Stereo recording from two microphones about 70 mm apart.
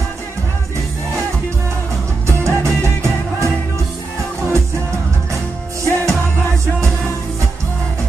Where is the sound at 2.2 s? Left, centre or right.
Right.